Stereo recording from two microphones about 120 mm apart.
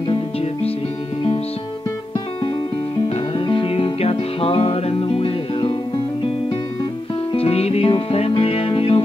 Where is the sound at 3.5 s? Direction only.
50° left (ahead or behind).